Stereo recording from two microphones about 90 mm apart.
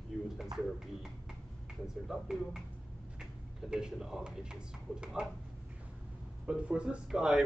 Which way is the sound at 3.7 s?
5° right (ahead or behind).